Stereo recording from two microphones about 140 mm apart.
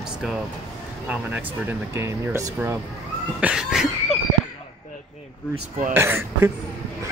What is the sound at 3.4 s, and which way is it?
Speech, 5° right (ahead or behind).